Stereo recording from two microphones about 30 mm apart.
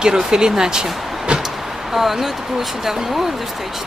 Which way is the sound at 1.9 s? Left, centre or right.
Centre.